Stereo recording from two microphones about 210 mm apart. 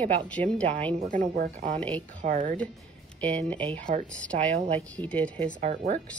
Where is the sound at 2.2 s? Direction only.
35° right (ahead or behind).